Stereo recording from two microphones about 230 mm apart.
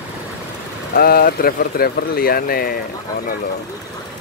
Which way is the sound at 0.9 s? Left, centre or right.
Left.